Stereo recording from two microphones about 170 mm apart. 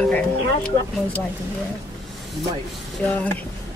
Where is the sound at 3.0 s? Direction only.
10° left (ahead or behind).